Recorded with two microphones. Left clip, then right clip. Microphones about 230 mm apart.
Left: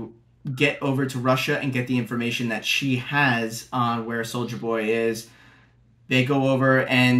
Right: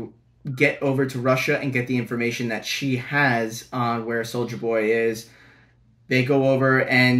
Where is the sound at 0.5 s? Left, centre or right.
Centre.